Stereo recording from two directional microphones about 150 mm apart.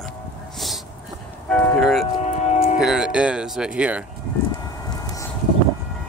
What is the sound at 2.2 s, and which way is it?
Music, 50° left (ahead or behind).